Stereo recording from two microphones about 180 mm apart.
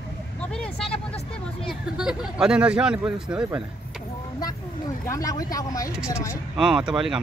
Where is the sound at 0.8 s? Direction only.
30° left (ahead or behind).